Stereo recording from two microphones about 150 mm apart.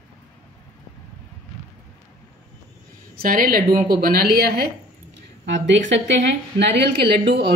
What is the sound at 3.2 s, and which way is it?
A woman's voice, 70° right (ahead or behind).